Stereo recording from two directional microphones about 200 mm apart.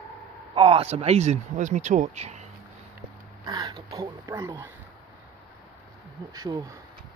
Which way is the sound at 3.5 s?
20° right (ahead or behind).